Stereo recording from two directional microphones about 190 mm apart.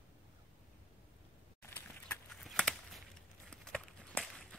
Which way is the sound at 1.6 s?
5° left (ahead or behind).